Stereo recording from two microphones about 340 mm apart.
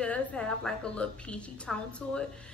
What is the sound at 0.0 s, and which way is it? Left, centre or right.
A woman's voice, centre.